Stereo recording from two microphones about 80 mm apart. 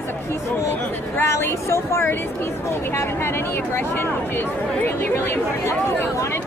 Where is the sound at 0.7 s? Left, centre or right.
Left.